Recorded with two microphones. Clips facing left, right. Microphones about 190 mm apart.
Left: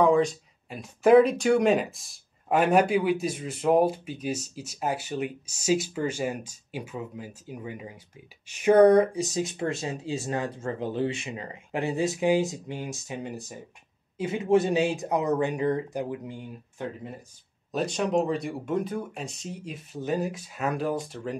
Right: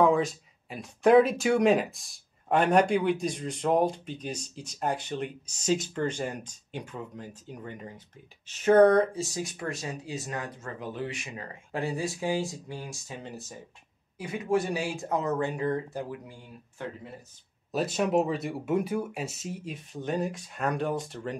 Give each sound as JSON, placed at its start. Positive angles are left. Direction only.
{"t": 0.0, "sound": "speech", "side_deg": 0}
{"t": 17.6, "sound": "speech", "side_deg": -5}